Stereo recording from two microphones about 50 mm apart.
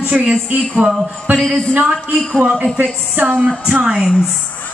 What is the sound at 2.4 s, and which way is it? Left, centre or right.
Speech, centre.